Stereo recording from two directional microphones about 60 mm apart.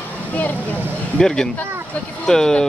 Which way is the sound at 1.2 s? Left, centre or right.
Centre.